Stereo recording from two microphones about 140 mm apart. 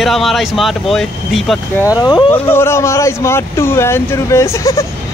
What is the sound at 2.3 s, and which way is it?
Speech, 15° left (ahead or behind).